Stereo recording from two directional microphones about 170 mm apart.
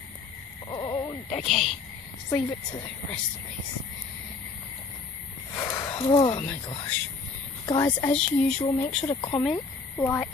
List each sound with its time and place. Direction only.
0.7 s a sound: 25° left (ahead or behind)
1.3 s speech: centre (ahead or behind)
2.2 s speech: 20° left (ahead or behind)
5.6 s a sound: 15° left (ahead or behind)
5.9 s speech: 30° left (ahead or behind)
9.4 s speech: 15° left (ahead or behind)